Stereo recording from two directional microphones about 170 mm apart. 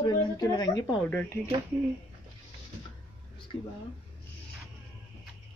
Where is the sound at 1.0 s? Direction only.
15° left (ahead or behind).